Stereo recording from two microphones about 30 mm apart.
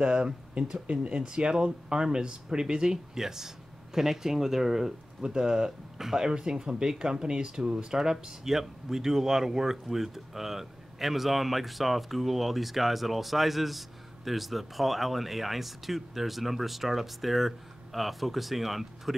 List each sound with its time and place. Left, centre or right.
0.0 s speech: right
3.2 s speech: centre
5.3 s speech: right; by 19.1 s centre